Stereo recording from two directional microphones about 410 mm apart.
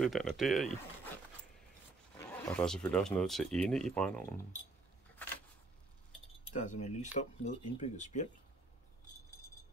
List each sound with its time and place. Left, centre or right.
0.0 s speech: centre
2.1 s speech: centre
5.2 s a sound: centre
6.5 s speech: centre